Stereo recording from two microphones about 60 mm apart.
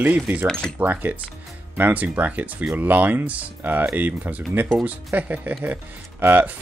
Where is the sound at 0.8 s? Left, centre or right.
Right.